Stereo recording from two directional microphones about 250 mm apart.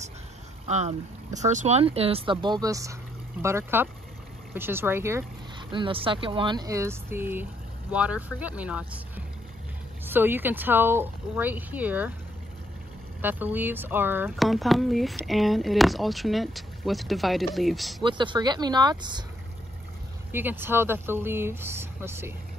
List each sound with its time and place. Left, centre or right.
0.7 s speech: right; by 5.2 s centre
5.7 s speech: right
13.2 s speech: centre
18.0 s speech: centre
20.2 s speech: centre